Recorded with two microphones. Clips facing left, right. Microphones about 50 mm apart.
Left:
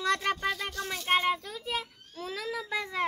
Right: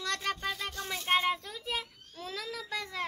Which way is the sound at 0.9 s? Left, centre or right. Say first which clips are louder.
Left 2 dB; centre.